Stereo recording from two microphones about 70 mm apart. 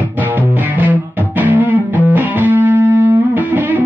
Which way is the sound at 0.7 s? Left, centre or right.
Right.